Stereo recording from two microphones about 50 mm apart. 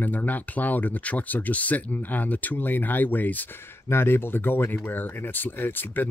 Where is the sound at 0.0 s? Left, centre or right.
Left.